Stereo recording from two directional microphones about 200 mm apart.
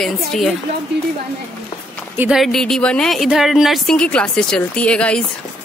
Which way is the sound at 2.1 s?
5° right (ahead or behind).